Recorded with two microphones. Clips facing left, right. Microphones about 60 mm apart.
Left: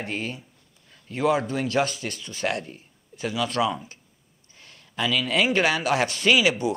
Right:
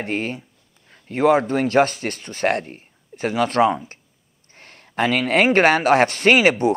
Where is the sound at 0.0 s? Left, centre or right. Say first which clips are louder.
Right 6 dB; right.